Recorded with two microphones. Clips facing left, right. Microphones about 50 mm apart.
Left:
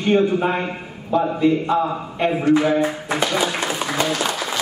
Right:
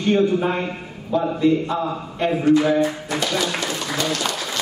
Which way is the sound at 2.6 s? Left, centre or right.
Centre.